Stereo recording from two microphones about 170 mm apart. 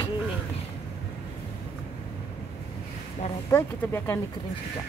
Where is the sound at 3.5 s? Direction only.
15° left (ahead or behind).